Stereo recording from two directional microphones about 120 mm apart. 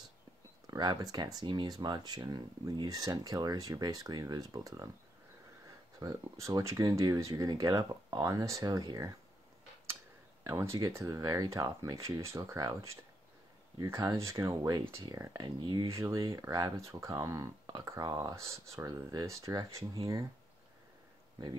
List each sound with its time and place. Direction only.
0.7 s speech: 35° right (ahead or behind)
5.9 s speech: 30° right (ahead or behind)
10.4 s speech: 20° right (ahead or behind)
15.9 s speech: 25° right (ahead or behind)